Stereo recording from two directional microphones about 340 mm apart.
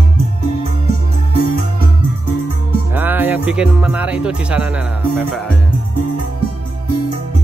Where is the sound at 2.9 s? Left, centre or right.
Centre.